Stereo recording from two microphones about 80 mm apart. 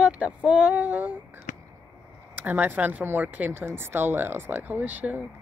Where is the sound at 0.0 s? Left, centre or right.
Centre.